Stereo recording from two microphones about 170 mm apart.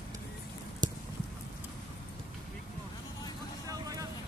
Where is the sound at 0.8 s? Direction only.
25° right (ahead or behind).